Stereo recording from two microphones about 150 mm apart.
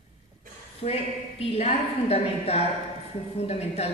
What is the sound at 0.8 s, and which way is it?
A man's voice, 45° left (ahead or behind).